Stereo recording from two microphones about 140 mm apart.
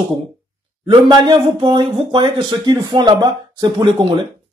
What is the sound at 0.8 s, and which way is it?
Speech, 35° right (ahead or behind).